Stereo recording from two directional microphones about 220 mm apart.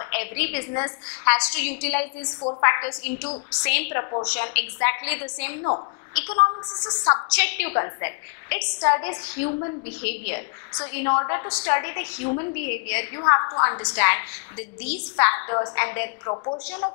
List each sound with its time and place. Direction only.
0.0 s a sound: 10° left (ahead or behind)
0.4 s a woman's voice: 10° left (ahead or behind)
6.8 s a woman's voice: 20° left (ahead or behind)